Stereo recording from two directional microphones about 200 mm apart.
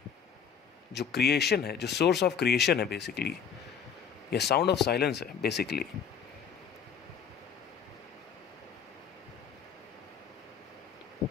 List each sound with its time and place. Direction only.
0.9 s speech: 55° left (ahead or behind)